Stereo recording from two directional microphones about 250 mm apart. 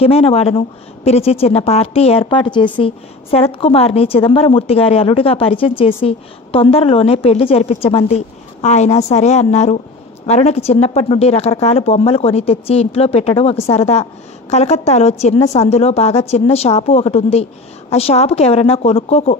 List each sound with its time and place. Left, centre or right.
0.0 s speech: left